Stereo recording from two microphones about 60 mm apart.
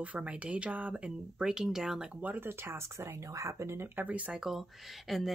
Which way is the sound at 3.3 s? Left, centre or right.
Right.